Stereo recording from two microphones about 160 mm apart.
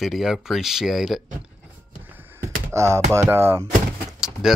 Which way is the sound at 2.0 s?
10° right (ahead or behind).